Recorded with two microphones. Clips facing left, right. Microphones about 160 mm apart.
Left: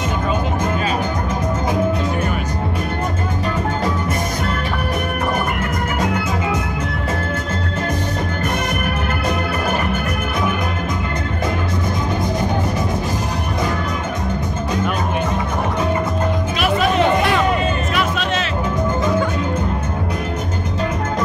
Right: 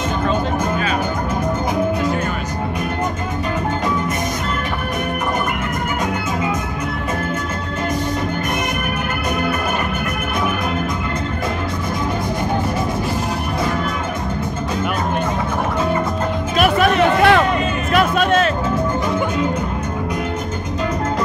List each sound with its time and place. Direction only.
16.5 s music: 60° right (ahead or behind)